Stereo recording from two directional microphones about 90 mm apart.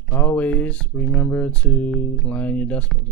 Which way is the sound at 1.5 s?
15° left (ahead or behind).